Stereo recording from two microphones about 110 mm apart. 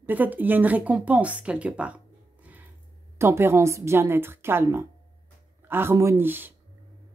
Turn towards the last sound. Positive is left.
turn(degrees=-20)  # may be behind; listen again after turning